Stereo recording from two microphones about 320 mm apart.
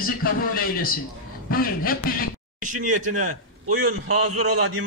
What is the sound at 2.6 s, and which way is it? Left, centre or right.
Speech, right.